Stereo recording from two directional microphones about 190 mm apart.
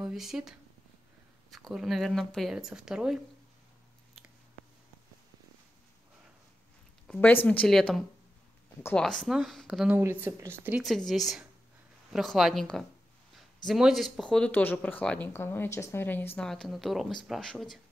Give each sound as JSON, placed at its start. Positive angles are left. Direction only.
{"t": 0.0, "sound": "speech", "side_deg": 0}
{"t": 7.1, "sound": "speech", "side_deg": 10}
{"t": 10.2, "sound": "speech", "side_deg": -10}